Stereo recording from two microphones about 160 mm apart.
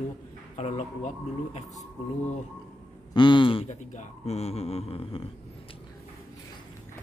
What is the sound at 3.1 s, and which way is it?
Speech, 30° left (ahead or behind).